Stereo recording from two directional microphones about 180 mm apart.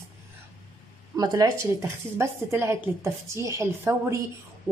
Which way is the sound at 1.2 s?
20° right (ahead or behind).